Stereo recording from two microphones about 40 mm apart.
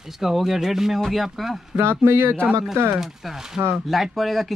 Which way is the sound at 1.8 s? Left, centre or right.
Right.